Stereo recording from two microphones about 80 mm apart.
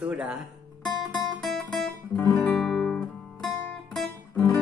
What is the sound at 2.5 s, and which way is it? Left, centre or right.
Guitar, centre.